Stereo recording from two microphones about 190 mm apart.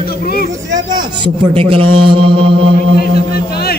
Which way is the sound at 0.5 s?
20° right (ahead or behind).